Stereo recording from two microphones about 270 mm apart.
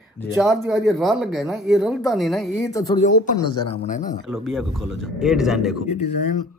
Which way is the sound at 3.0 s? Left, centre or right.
Left.